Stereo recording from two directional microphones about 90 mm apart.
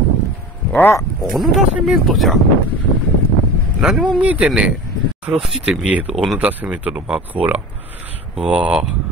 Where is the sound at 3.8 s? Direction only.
5° right (ahead or behind).